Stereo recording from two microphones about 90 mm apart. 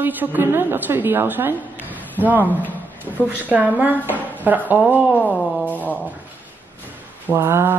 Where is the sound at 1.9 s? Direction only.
20° right (ahead or behind).